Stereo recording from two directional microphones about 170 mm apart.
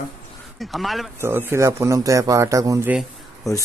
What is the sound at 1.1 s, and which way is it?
A man's voice, 15° right (ahead or behind).